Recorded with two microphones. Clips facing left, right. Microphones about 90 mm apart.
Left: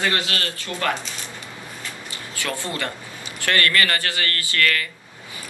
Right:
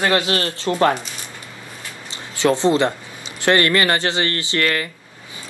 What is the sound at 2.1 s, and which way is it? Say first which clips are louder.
Speech: right 12 dB; 25° right (ahead or behind).